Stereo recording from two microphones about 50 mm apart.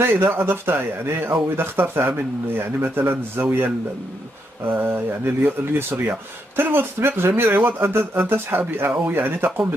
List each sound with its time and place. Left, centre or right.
0.0 s speech: right